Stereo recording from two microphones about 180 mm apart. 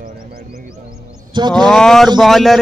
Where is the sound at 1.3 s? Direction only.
25° right (ahead or behind).